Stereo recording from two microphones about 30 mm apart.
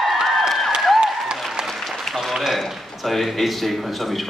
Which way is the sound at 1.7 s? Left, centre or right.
Centre.